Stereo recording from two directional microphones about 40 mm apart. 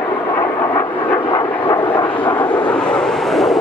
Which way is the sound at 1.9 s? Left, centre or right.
Left.